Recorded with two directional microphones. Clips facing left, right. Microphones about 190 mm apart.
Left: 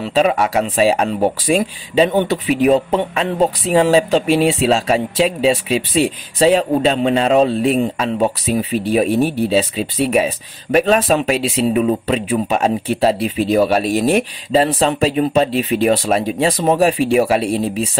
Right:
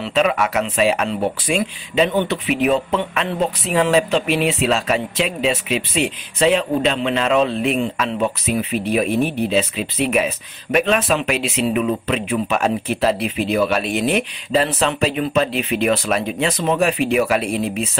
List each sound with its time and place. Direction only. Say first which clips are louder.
0.0 s speech: left 3 dB; 30° left (ahead or behind)